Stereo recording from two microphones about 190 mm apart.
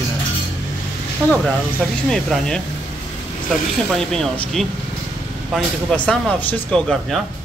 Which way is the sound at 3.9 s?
5° left (ahead or behind).